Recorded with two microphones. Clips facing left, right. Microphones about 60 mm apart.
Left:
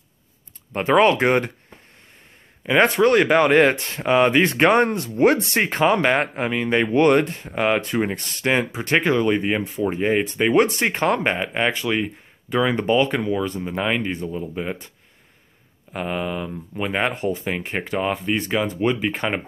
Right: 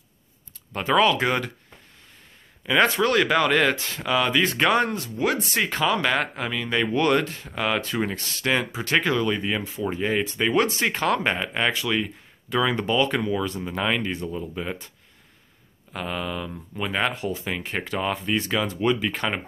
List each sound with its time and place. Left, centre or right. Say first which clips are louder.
0.7 s speech: left 4 dB; left
2.6 s speech: left 4 dB; left
5.7 s speech: left 6 dB; left; by 14.8 s centre
15.9 s speech: left 4 dB; centre
17.1 s speech: left 5 dB; left
17.5 s speech: left 3 dB; left